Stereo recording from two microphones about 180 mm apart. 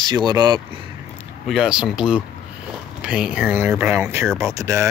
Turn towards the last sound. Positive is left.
turn(degrees=-15)  # may be behind; listen again after turning